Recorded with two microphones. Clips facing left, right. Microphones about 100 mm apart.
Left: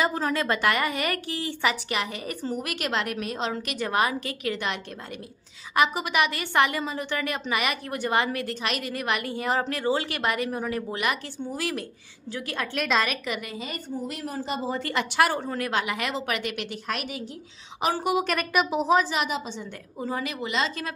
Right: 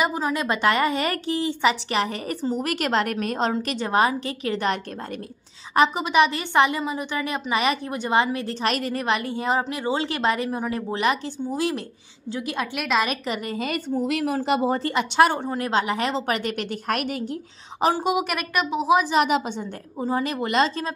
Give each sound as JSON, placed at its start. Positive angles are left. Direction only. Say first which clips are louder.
{"t": 0.0, "sound": "a woman's voice", "louder": "right 1 dB", "side_deg": -15}
{"t": 3.6, "sound": "a woman's voice", "louder": "right 2 dB", "side_deg": -30}
{"t": 5.8, "sound": "a woman's voice", "louder": "right 5 dB", "side_deg": -25}
{"t": 8.6, "sound": "a woman's voice", "louder": "right 6 dB", "side_deg": -35}
{"t": 12.7, "sound": "a woman's voice", "louder": "right 1 dB", "side_deg": -5}
{"t": 13.1, "sound": "a woman's voice", "louder": "right 4 dB", "side_deg": -35}
{"t": 13.6, "sound": "a woman's voice", "louder": "right 8 dB", "side_deg": -65}
{"t": 14.8, "sound": "a woman's voice", "louder": "right 4 dB", "side_deg": -25}
{"t": 17.9, "sound": "a woman's voice", "louder": "right 1 dB", "side_deg": -15}
{"t": 18.9, "sound": "a woman's voice", "louder": "right 4 dB", "side_deg": -15}
{"t": 20.2, "sound": "a woman's voice", "louder": "right 6 dB", "side_deg": -45}